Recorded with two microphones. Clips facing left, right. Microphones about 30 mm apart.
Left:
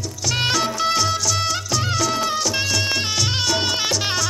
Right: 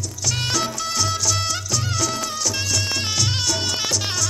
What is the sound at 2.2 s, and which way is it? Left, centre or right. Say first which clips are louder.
Music: left 4 dB; left.